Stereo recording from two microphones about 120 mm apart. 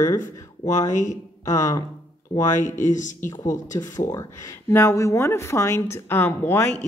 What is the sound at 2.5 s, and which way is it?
Speech, 90° left.